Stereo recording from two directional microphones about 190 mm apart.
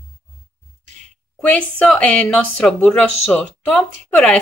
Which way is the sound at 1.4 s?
5° left (ahead or behind).